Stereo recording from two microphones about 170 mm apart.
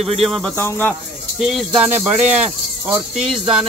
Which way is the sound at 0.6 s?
10° left (ahead or behind).